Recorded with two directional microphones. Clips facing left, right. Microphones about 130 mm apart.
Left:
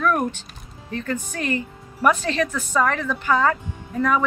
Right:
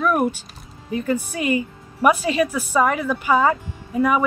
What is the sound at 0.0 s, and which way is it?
Speech, 10° right (ahead or behind).